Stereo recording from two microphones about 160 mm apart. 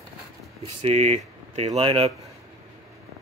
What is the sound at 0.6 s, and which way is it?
Speech, 45° right (ahead or behind).